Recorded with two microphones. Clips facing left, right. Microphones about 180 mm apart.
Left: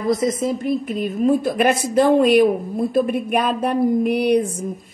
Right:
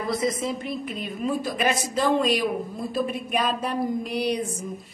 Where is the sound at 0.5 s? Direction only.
50° left (ahead or behind).